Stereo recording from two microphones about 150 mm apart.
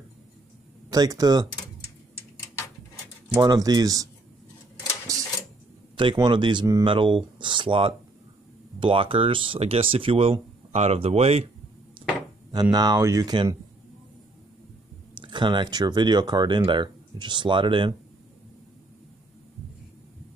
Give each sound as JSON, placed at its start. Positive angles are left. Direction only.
{"t": 0.9, "sound": "speech", "side_deg": -25}
{"t": 3.3, "sound": "speech", "side_deg": -25}
{"t": 5.1, "sound": "a sound", "side_deg": -20}
{"t": 5.9, "sound": "speech", "side_deg": -30}
{"t": 12.7, "sound": "speech", "side_deg": -25}
{"t": 15.1, "sound": "speech", "side_deg": -30}